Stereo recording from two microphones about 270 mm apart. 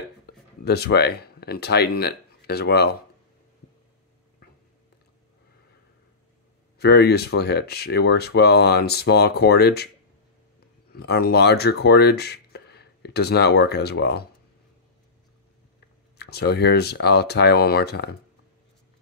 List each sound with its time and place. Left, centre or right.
0.7 s speech: left
6.8 s speech: left
10.9 s speech: left
16.2 s speech: left